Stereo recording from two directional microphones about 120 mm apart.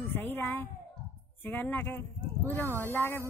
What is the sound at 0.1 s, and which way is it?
A child's voice, 15° left (ahead or behind).